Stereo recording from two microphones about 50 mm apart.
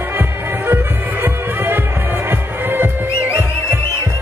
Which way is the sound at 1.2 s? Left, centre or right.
Right.